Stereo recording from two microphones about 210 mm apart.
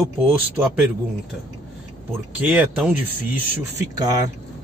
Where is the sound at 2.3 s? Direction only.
5° right (ahead or behind).